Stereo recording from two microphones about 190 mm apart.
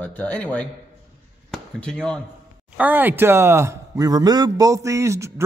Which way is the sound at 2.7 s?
10° right (ahead or behind).